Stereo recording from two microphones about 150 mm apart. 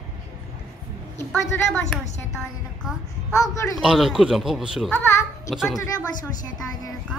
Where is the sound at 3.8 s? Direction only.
Centre (ahead or behind).